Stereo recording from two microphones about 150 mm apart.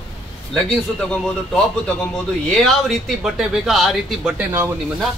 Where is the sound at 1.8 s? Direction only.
5° left (ahead or behind); by 4.7 s 10° right (ahead or behind).